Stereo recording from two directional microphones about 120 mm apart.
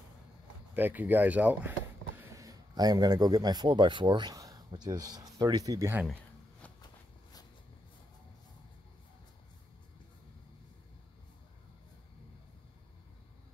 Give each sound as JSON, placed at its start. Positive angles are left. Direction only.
{"t": 0.7, "sound": "speech", "side_deg": -15}
{"t": 2.3, "sound": "speech", "side_deg": -30}